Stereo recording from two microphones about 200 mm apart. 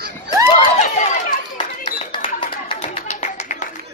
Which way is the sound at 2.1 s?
25° left (ahead or behind).